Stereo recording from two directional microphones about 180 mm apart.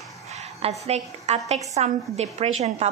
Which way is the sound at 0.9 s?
35° right (ahead or behind).